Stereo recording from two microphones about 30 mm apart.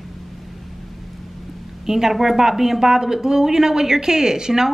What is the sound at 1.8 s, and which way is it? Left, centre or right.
Speech, centre.